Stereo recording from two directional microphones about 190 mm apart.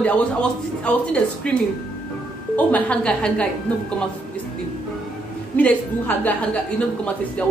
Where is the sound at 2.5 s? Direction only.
5° left (ahead or behind).